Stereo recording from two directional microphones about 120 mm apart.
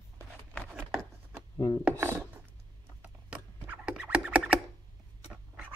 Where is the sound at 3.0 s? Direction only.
15° right (ahead or behind).